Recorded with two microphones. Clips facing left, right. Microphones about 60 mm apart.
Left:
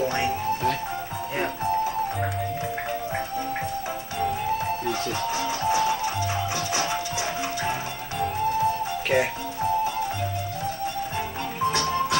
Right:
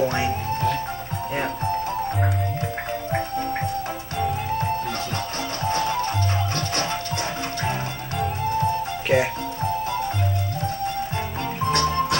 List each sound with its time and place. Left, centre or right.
0.0 s music: centre
5.6 s music: centre
8.2 s music: centre
11.6 s music: centre